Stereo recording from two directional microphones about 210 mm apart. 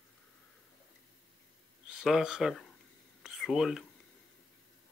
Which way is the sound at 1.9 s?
Centre (ahead or behind).